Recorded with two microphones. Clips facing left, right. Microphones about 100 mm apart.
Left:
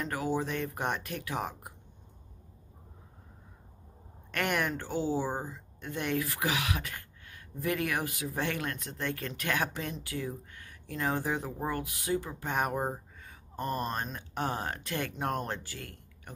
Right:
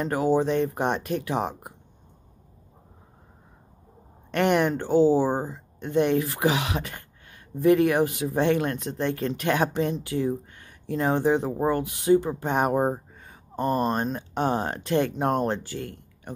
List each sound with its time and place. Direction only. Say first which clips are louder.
0.0 s speech: right 9 dB; 30° right (ahead or behind)
4.3 s speech: right 9 dB; 25° right (ahead or behind)